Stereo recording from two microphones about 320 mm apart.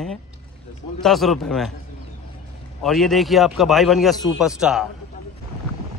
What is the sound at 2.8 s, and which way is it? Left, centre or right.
Speech, centre.